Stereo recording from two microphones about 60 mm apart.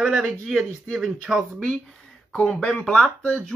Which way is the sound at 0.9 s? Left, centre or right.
Centre.